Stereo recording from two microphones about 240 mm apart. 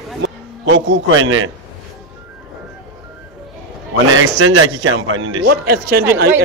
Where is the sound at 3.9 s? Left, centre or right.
Right.